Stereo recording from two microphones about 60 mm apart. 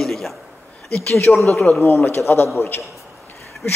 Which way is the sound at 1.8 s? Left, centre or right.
Left.